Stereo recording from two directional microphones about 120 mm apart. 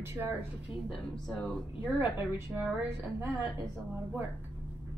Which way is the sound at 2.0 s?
20° right (ahead or behind).